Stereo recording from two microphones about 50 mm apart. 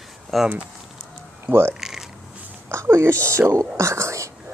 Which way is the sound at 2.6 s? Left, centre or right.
Right.